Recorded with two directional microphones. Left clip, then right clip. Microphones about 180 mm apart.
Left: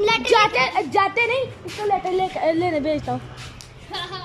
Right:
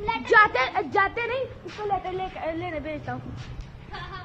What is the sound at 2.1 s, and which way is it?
A woman's voice, 30° left (ahead or behind).